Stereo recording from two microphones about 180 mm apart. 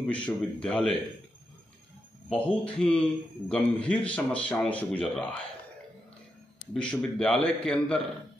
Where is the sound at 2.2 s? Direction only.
5° left (ahead or behind).